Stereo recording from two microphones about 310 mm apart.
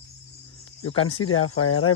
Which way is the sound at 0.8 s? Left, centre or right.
Left.